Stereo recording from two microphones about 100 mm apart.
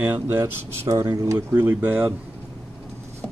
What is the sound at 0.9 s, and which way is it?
Speech, 45° right (ahead or behind).